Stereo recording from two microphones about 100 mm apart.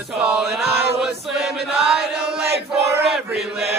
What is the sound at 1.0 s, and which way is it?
Choir, 5° right (ahead or behind).